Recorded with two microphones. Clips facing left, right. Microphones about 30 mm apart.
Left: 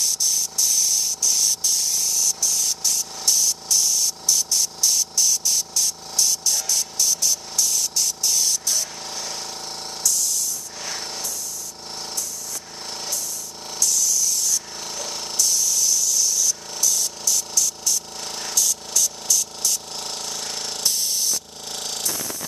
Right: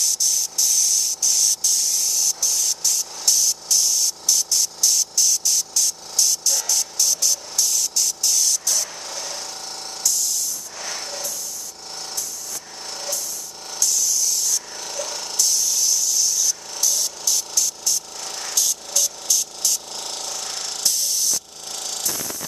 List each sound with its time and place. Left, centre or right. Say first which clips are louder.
0.0 s spray: right 1 dB; centre
9.0 s jackhammer: even; centre
10.0 s music: even; centre
13.7 s spray: even; centre
15.0 s jackhammer: right 3 dB; centre
15.3 s spray: even; centre
16.8 s music: even; centre
18.2 s music: even; left
18.5 s music: even; centre
19.7 s spray: even; centre
21.7 s a sound: left 1 dB; centre